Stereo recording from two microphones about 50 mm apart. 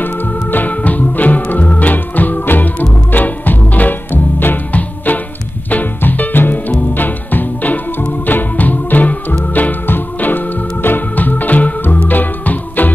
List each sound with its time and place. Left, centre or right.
0.0 s organ: left
5.7 s music: left
8.3 s organ: left